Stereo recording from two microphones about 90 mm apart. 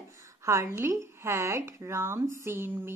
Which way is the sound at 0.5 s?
35° right (ahead or behind).